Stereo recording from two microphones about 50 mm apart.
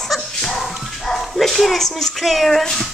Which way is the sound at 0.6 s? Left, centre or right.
Centre.